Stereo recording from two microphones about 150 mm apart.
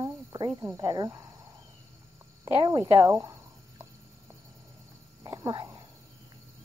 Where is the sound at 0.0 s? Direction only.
25° right (ahead or behind).